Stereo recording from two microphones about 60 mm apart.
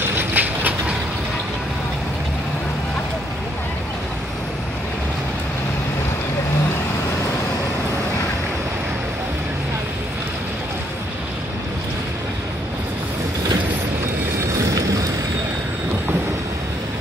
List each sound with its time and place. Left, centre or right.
0.0 s train: right
14.6 s vehicle: right